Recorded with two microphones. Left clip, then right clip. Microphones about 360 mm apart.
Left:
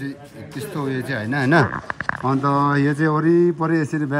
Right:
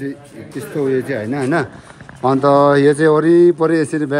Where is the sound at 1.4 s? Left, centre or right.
Left.